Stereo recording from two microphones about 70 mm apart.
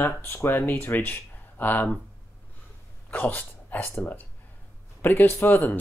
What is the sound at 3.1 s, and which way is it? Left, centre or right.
Speech, left.